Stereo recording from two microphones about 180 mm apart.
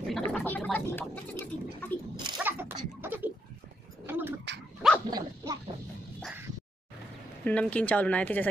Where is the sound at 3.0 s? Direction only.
10° right (ahead or behind).